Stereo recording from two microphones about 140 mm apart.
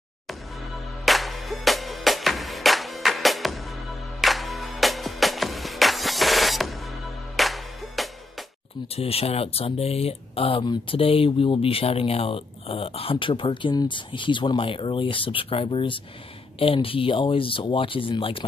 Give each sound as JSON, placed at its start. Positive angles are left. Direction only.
{"t": 0.3, "sound": "music", "side_deg": 0}
{"t": 8.8, "sound": "speech", "side_deg": 45}